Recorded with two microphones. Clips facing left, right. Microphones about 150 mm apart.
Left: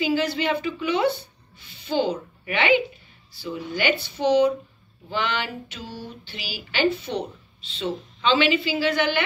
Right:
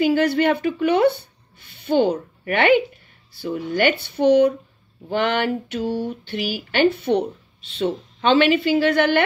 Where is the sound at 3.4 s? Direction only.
55° right (ahead or behind).